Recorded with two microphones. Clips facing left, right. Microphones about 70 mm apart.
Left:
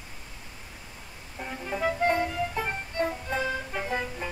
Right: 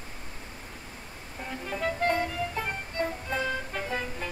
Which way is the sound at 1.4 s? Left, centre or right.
Centre.